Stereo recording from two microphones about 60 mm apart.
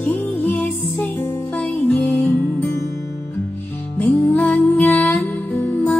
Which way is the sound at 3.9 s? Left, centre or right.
Left.